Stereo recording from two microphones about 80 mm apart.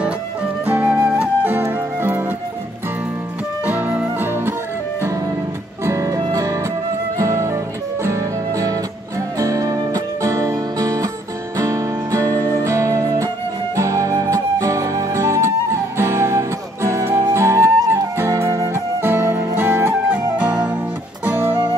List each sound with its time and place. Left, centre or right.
0.7 s flute: centre
1.6 s music: right
3.6 s music: right
5.9 s music: right
17.1 s flute: right
18.1 s music: right; by 20.7 s centre
21.3 s music: right